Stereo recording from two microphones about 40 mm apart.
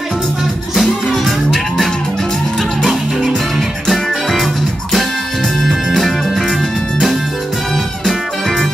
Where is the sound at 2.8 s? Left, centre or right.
Centre.